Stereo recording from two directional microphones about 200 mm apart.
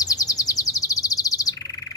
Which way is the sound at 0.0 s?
20° left (ahead or behind).